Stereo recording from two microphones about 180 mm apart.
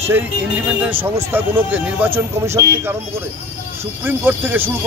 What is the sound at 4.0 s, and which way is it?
Speech, 10° right (ahead or behind).